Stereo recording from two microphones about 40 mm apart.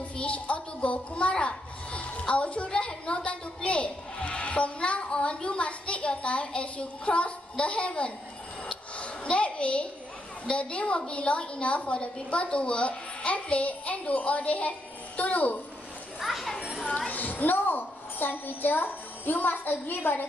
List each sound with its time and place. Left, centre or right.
0.2 s a child's voice: left
8.6 s a sound: left
10.5 s a woman's voice: left
16.2 s a child's voice: centre
17.1 s a child's voice: left